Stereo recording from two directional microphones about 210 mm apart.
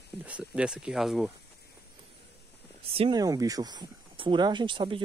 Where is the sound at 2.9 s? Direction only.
20° right (ahead or behind).